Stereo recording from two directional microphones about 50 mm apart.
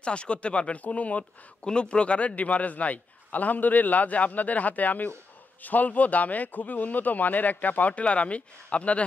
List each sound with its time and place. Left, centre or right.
0.0 s a man's voice: left